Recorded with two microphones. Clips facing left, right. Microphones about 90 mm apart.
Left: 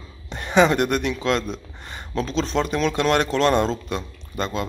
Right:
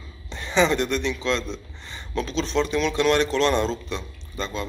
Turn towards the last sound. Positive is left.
turn(degrees=50)  # may be behind; listen again after turning